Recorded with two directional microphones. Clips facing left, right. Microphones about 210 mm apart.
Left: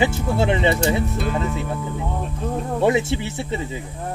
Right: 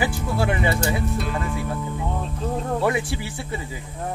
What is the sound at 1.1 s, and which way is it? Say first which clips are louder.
Speech: left 3 dB; centre (ahead or behind).